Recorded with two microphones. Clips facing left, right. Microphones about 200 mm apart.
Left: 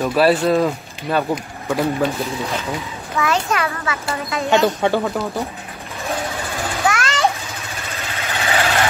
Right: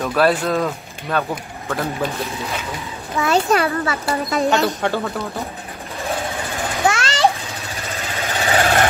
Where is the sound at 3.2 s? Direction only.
35° right (ahead or behind).